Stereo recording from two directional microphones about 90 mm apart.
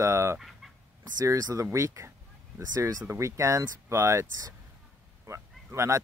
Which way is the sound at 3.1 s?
35° right (ahead or behind).